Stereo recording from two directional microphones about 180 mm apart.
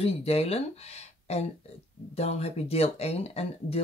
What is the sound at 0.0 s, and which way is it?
Speech, 35° left (ahead or behind).